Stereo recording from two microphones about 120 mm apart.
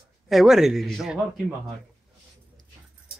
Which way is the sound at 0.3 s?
Centre (ahead or behind).